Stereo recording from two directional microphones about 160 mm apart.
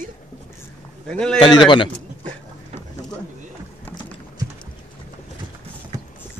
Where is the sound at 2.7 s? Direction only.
40° right (ahead or behind).